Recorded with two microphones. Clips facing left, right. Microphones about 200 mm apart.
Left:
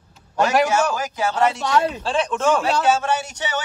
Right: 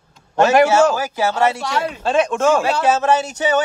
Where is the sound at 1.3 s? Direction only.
10° right (ahead or behind).